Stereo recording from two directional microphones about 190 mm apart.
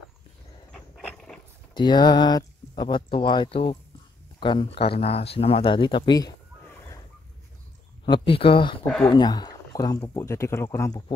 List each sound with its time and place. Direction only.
0.7 s a sound: 5° left (ahead or behind)
1.7 s speech: 25° left (ahead or behind)
8.0 s speech: 25° left (ahead or behind)